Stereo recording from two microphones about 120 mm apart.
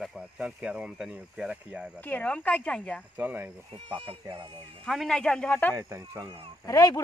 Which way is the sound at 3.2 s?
15° right (ahead or behind).